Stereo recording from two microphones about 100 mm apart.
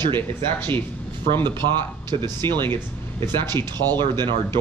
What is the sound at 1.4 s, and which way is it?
Speech, 50° right (ahead or behind).